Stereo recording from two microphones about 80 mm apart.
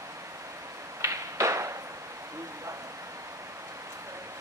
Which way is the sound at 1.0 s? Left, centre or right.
Right.